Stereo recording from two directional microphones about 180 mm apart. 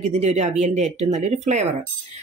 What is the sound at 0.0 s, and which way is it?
Speech, 40° right (ahead or behind).